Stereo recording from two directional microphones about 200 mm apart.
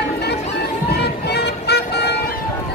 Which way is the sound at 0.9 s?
55° left (ahead or behind).